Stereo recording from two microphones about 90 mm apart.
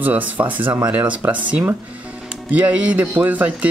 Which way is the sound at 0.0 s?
20° right (ahead or behind).